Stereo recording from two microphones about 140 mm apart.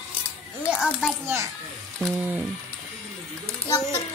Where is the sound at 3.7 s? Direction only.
25° left (ahead or behind).